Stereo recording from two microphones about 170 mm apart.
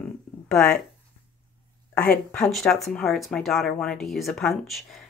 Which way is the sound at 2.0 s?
5° left (ahead or behind).